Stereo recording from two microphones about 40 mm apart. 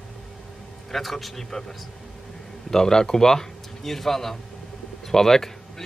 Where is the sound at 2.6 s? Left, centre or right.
Centre.